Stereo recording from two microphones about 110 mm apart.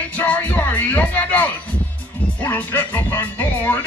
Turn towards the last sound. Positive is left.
turn(degrees=15)  # may be behind; listen again after turning